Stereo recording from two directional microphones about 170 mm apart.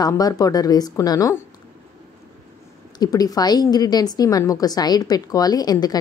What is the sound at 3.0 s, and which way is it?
A woman's voice, 20° left (ahead or behind).